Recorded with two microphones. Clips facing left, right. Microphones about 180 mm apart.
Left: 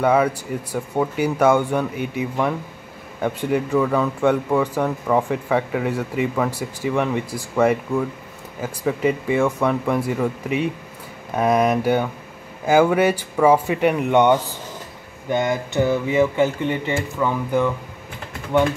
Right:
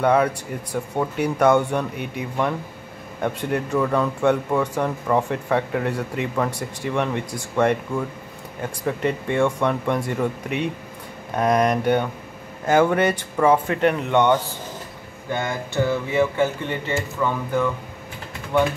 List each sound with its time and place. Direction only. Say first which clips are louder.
0.0 s a man's voice: left 1 dB; 5° left (ahead or behind)